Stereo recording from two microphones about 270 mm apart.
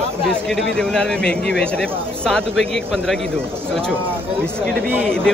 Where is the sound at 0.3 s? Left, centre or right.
Centre.